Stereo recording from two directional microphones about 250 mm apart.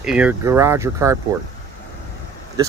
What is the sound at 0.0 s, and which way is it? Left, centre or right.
Speech, centre.